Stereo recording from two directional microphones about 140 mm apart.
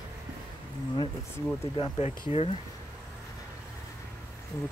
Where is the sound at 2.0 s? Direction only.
50° left (ahead or behind).